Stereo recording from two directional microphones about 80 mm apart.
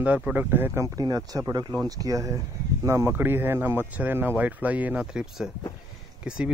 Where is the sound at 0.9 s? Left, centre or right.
Right; by 5.0 s centre.